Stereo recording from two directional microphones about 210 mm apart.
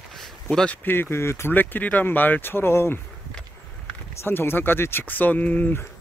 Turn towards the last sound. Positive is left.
turn(degrees=10)  # may be behind; listen again after turning